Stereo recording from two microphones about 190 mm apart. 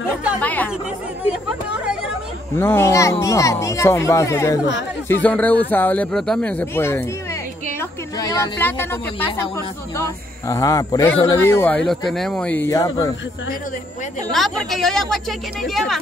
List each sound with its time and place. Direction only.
0.4 s speech: 10° left (ahead or behind)
1.2 s a woman's voice: 5° right (ahead or behind)
2.5 s speech: 10° left (ahead or behind)
8.2 s speech: 20° left (ahead or behind)
14.3 s a woman's voice: centre (ahead or behind)